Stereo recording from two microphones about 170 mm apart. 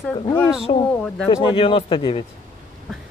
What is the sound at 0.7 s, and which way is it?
Speech, 45° left (ahead or behind).